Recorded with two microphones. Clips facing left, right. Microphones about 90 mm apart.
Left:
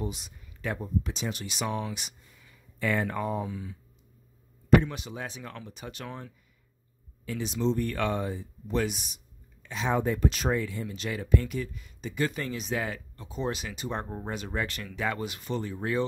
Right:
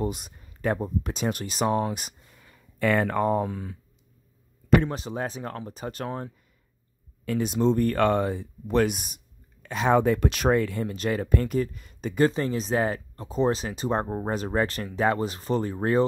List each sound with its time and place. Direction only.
0.0 s speech: 45° right (ahead or behind)
4.8 s speech: 35° right (ahead or behind)
7.2 s speech: 50° right (ahead or behind)
12.3 s speech: 35° right (ahead or behind)